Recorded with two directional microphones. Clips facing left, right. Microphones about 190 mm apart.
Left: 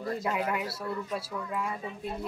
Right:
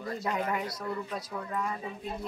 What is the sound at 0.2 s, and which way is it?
Speech, 5° left (ahead or behind).